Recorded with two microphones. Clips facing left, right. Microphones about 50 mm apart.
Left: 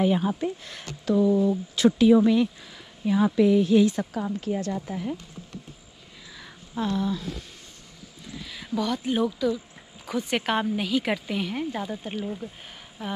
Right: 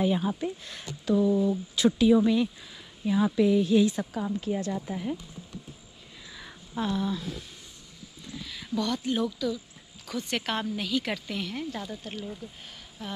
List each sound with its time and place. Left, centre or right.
0.0 s speech: left
1.9 s speech: left
3.1 s speech: left
6.3 s a sound: centre
8.4 s speech: centre